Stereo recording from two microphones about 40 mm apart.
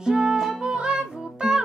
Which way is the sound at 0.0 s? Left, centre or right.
Centre.